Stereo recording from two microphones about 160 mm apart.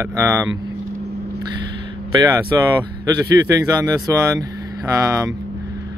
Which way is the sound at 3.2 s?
20° right (ahead or behind).